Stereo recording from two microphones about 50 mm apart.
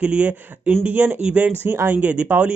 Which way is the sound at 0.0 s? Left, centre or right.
Right.